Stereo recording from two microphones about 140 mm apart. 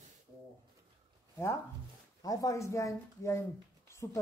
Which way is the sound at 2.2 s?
25° left (ahead or behind).